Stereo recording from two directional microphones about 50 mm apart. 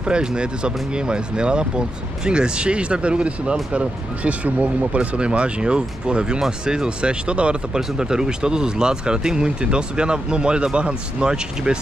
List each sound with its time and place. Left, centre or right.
0.0 s speech: centre